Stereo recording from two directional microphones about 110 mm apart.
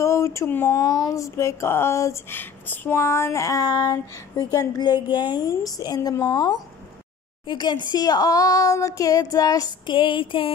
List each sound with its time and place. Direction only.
0.0 s speech: 25° left (ahead or behind)
9.8 s music: 50° left (ahead or behind)